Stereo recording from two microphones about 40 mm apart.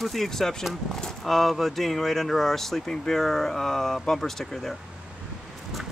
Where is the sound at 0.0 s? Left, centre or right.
Centre.